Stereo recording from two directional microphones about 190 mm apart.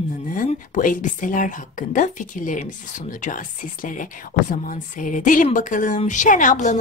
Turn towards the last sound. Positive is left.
turn(degrees=40)  # may be behind; listen again after turning